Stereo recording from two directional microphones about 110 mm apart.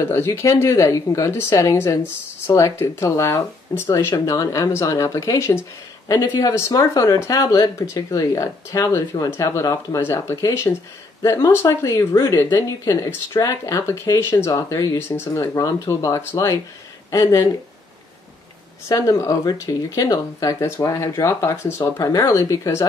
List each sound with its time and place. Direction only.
0.0 s speech: 25° left (ahead or behind)
15.0 s speech: 20° left (ahead or behind)
18.9 s speech: 30° left (ahead or behind)